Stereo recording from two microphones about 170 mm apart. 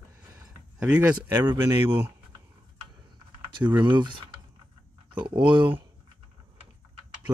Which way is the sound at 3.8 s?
25° right (ahead or behind).